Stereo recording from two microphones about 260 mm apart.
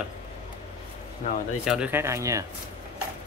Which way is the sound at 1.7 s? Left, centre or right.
Centre.